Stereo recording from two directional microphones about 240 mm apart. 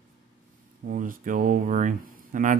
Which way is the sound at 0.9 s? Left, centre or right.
Right.